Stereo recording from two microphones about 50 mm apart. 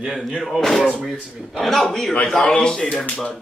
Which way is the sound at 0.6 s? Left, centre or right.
Centre.